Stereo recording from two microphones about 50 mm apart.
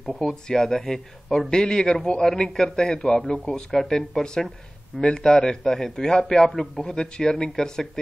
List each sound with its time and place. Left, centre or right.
0.1 s a man's voice: centre